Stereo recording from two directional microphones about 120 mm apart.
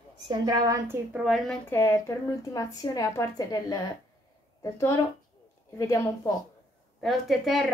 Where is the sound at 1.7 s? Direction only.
20° left (ahead or behind).